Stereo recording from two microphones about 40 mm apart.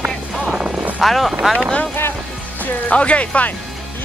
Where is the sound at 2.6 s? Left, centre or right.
Left.